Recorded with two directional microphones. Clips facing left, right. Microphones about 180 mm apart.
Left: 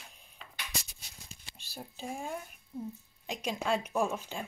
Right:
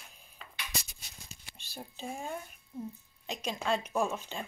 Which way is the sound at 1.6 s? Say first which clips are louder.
Even; 5° left (ahead or behind).